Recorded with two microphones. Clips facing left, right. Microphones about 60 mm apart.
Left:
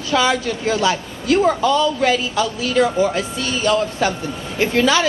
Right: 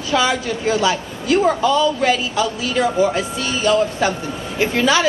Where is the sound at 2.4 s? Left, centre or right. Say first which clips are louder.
Left 1 dB; right.